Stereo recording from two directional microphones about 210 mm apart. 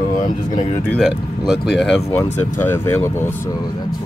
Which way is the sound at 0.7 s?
10° left (ahead or behind).